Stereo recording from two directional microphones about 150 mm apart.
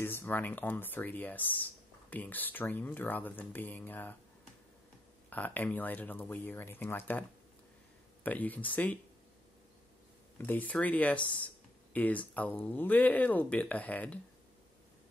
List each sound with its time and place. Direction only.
0.0 s speech: 15° left (ahead or behind)
5.3 s speech: 10° left (ahead or behind)
10.3 s speech: 10° left (ahead or behind)